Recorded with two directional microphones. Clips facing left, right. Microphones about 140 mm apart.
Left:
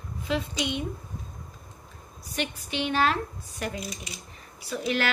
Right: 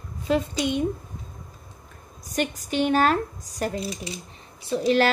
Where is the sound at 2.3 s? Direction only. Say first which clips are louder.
Right 5 dB; 45° right (ahead or behind).